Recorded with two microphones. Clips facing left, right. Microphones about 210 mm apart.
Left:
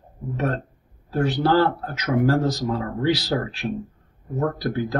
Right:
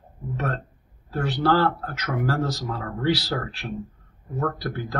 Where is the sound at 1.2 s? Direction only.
15° left (ahead or behind).